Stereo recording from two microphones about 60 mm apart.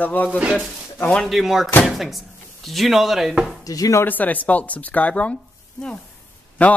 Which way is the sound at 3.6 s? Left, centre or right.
Left.